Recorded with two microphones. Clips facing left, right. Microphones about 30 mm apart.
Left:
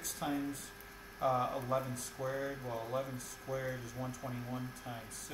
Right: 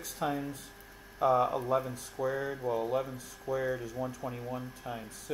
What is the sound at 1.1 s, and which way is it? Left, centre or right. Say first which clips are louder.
Speech: right 7 dB; right.